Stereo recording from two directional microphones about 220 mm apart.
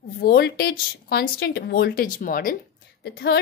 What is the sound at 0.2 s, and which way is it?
A woman's voice, 45° left (ahead or behind).